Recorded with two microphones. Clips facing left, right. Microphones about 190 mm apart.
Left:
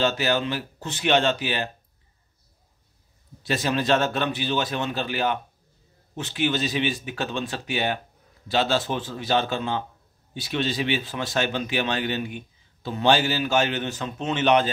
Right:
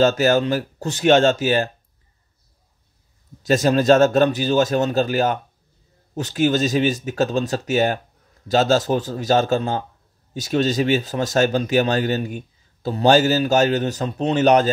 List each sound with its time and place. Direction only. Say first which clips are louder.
0.0 s speech: right 7 dB; 45° right (ahead or behind)
3.4 s speech: right 8 dB; 45° right (ahead or behind)